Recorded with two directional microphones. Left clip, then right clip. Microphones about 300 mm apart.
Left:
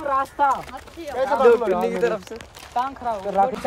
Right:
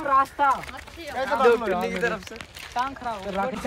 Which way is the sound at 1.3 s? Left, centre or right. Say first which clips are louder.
Left 4 dB; left.